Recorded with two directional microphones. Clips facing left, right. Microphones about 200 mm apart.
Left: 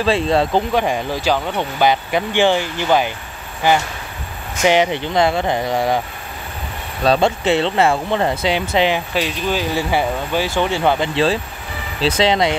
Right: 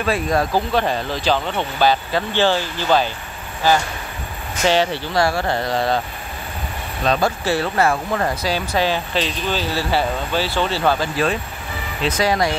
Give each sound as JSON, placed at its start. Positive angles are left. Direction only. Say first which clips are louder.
{"t": 0.0, "sound": "speech", "louder": "left 3 dB", "side_deg": 25}
{"t": 4.6, "sound": "speech", "louder": "left 3 dB", "side_deg": 15}
{"t": 7.1, "sound": "speech", "louder": "left 4 dB", "side_deg": 25}